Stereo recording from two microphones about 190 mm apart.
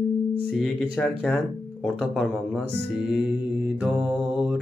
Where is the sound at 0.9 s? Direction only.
5° left (ahead or behind).